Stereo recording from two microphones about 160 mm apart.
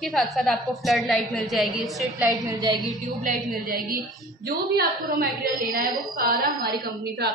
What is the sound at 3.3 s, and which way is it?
A woman's voice, 60° right (ahead or behind).